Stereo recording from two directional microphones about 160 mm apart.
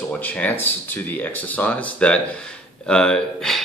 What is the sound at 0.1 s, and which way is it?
Speech, 10° left (ahead or behind).